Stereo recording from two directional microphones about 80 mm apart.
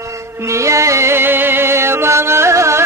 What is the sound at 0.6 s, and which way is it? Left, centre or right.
Music, right.